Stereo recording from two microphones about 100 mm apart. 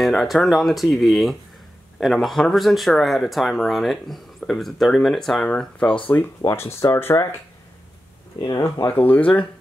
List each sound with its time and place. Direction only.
0.0 s speech: centre (ahead or behind)
6.4 s speech: 25° left (ahead or behind)
8.4 s speech: 40° left (ahead or behind)
8.6 s speech: 25° left (ahead or behind)